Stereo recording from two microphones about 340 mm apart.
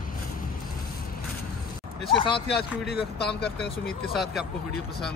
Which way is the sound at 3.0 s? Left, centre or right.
Centre.